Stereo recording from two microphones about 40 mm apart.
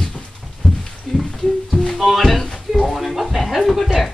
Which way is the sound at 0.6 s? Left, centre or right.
Left.